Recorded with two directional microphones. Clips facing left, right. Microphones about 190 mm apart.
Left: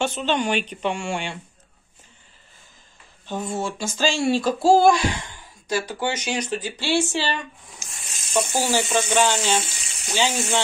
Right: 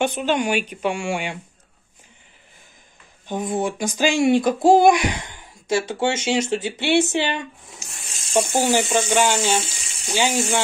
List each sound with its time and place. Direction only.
0.0 s speech: 10° right (ahead or behind)
3.3 s speech: 15° right (ahead or behind)
8.1 s speech: 30° right (ahead or behind)
8.5 s speech: 15° right (ahead or behind)